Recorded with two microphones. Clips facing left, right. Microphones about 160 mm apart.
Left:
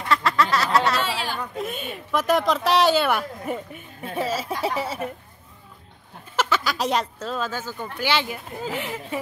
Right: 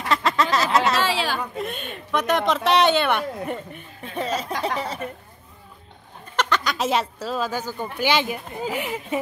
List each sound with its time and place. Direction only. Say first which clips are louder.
0.1 s a sound: even; 20° right (ahead or behind)
1.0 s chatter: right 4 dB; 90° right
1.6 s speech: even; 5° left (ahead or behind)
6.3 s speech: even; 5° left (ahead or behind); by 9.2 s 15° right (ahead or behind)